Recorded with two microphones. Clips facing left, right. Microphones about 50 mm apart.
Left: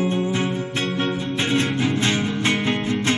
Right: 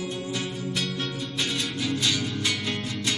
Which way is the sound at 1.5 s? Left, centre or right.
Left.